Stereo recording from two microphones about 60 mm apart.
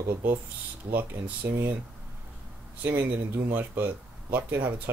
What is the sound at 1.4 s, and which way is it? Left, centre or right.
Speech, right.